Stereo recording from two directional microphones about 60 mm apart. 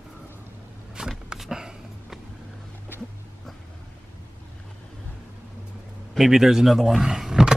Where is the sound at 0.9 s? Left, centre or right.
Centre.